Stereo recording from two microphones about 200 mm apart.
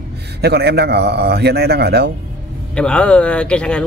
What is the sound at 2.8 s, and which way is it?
Speech, 5° left (ahead or behind).